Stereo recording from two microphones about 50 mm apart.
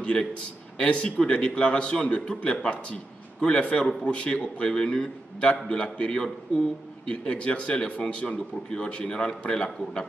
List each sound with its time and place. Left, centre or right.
0.0 s a man's voice: left